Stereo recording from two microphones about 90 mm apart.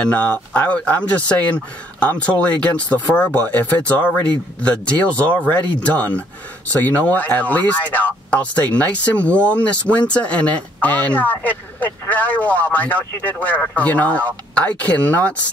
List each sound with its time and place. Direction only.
0.0 s speech: 15° left (ahead or behind)